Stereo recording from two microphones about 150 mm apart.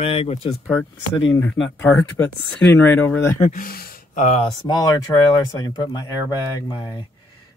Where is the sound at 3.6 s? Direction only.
75° left (ahead or behind).